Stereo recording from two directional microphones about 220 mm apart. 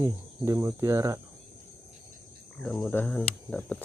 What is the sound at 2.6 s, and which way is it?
Speech, centre (ahead or behind).